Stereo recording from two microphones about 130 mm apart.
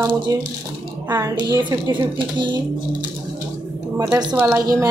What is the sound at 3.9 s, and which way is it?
Speech, 25° right (ahead or behind).